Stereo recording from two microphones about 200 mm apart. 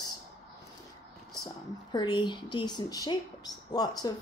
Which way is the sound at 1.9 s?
20° left (ahead or behind).